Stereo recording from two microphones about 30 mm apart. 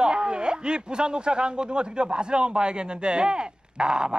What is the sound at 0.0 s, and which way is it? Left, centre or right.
Speech, right.